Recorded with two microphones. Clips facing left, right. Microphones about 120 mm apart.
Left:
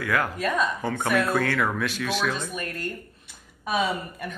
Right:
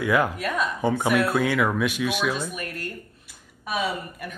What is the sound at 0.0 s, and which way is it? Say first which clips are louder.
Speech: right 3 dB; 20° right (ahead or behind).